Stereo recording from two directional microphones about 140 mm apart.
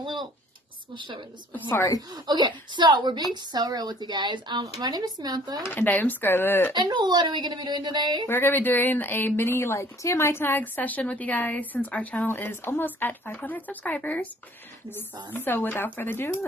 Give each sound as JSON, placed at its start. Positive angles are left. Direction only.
{"t": 0.0, "sound": "a sound", "side_deg": -35}
{"t": 0.9, "sound": "a woman's voice", "side_deg": -35}
{"t": 1.5, "sound": "a woman's voice", "side_deg": 15}
{"t": 2.0, "sound": "a woman's voice", "side_deg": -30}
{"t": 5.7, "sound": "a woman's voice", "side_deg": 15}
{"t": 6.7, "sound": "a woman's voice", "side_deg": -30}
{"t": 8.3, "sound": "a woman's voice", "side_deg": 15}
{"t": 15.3, "sound": "a woman's voice", "side_deg": 15}